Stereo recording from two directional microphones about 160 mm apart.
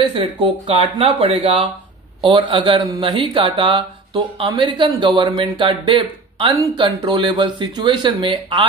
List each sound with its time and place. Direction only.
0.1 s speech: 35° right (ahead or behind)